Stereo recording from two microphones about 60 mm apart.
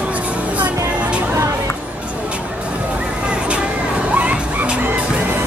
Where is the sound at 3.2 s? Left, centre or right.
Centre.